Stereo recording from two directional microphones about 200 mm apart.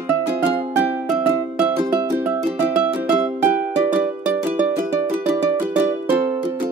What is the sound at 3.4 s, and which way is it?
Music, 10° right (ahead or behind).